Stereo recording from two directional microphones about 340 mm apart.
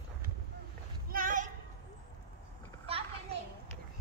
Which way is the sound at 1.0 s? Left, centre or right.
Right.